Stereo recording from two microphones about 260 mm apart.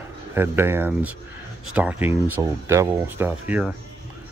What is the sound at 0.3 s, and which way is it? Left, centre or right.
Speech, centre.